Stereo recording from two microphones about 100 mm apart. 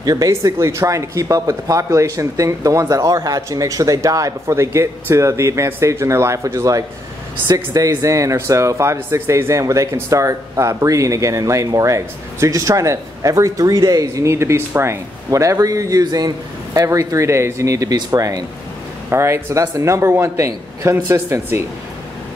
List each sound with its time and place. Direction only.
0.0 s speech: 35° right (ahead or behind)
19.0 s a man's voice: 25° right (ahead or behind)